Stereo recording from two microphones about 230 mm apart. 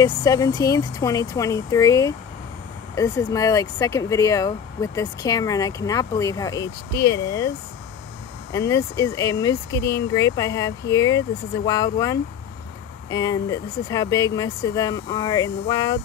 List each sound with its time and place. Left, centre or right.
0.0 s speech: centre